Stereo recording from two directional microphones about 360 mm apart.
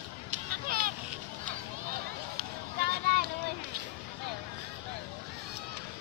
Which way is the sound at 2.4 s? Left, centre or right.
Right.